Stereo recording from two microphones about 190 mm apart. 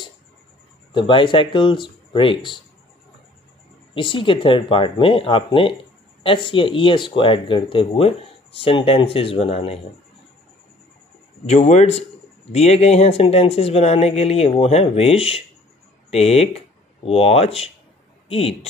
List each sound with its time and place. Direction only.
0.9 s speech: 25° left (ahead or behind)
3.9 s speech: 25° left (ahead or behind)
11.4 s speech: 35° left (ahead or behind)